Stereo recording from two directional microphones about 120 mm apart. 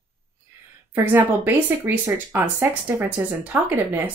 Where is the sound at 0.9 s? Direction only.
15° right (ahead or behind).